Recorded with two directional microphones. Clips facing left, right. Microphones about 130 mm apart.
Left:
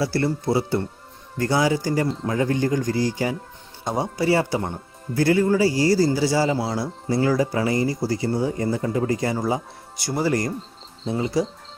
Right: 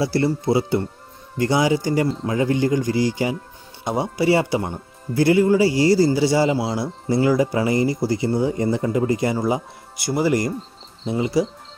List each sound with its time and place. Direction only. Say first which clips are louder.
0.0 s a man's voice: right 2 dB; 15° right (ahead or behind)
6.5 s a man's voice: right 2 dB; 10° right (ahead or behind)